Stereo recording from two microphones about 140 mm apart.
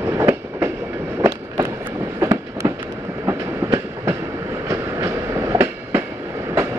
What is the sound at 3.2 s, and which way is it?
Train, 20° right (ahead or behind).